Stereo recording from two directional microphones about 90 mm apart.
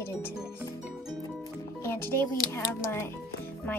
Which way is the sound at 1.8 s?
25° left (ahead or behind).